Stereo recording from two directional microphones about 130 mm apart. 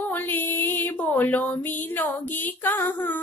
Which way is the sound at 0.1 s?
15° left (ahead or behind).